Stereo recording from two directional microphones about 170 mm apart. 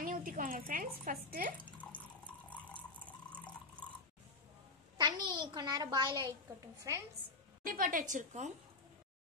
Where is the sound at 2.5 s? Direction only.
10° left (ahead or behind).